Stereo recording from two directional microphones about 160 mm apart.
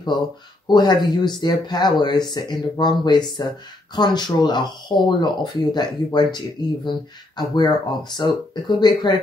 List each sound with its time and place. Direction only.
0.7 s speech: 25° left (ahead or behind)